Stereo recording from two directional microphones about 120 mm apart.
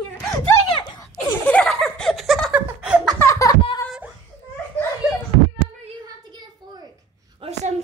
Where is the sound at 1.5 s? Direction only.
10° left (ahead or behind).